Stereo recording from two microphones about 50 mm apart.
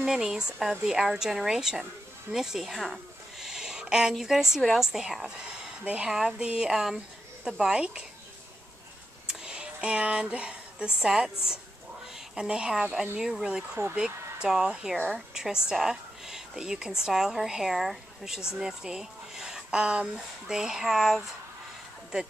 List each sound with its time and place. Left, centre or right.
0.0 s speech: centre
2.3 s a sound: centre
4.1 s speech: centre
6.3 s speech: centre
7.7 s speech: centre
9.3 s a woman's voice: centre